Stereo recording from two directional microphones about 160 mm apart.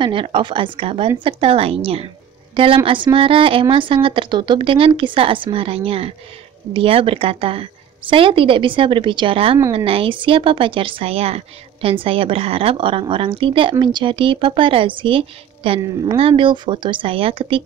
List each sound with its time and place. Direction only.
0.0 s a woman's voice: 30° right (ahead or behind)
15.8 s speech: 20° right (ahead or behind)
16.2 s a woman's voice: 35° right (ahead or behind)